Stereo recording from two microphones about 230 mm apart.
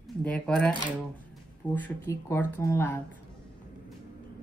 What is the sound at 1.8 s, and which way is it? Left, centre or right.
Speech, centre.